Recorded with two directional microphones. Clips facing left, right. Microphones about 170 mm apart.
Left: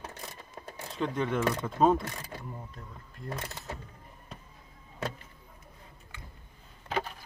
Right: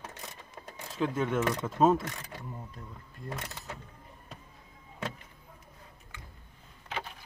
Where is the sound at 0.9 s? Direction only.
5° right (ahead or behind).